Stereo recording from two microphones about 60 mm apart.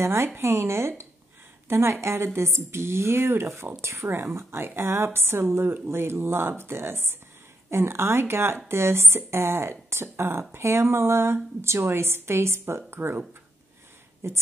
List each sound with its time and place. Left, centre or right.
0.0 s speech: right
14.2 s speech: right